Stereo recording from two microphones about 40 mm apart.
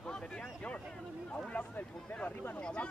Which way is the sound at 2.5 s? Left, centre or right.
Left.